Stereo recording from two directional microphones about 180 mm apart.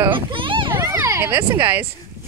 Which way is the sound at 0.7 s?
15° right (ahead or behind).